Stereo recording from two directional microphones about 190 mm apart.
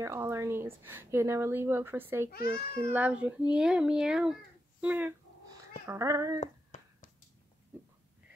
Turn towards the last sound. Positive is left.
turn(degrees=40)  # may be behind; listen again after turning